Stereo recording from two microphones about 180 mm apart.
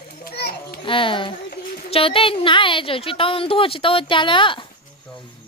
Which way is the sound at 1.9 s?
30° left (ahead or behind).